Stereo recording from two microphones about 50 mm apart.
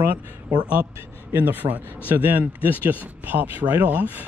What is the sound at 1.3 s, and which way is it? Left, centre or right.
Speech, right.